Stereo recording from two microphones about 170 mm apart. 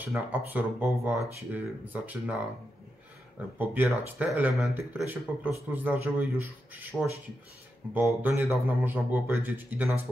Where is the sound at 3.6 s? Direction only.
10° right (ahead or behind).